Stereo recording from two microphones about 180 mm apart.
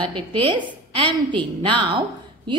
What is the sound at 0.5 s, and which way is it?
A woman's voice, 25° right (ahead or behind).